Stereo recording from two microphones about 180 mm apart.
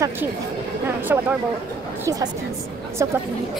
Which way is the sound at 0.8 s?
10° right (ahead or behind).